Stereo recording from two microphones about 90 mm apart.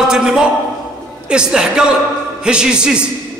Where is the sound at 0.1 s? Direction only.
5° right (ahead or behind).